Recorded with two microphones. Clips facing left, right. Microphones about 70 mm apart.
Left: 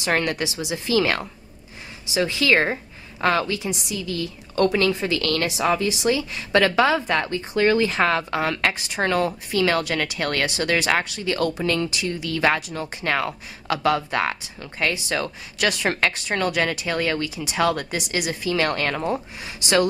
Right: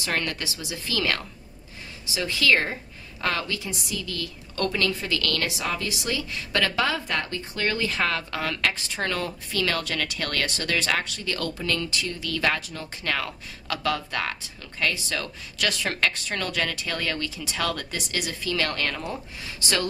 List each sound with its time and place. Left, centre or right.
0.0 s a woman's voice: left
18.9 s speech: left
19.1 s speech: centre